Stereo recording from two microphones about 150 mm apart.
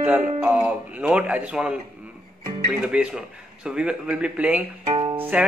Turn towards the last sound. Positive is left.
turn(degrees=-10)  # may be behind; listen again after turning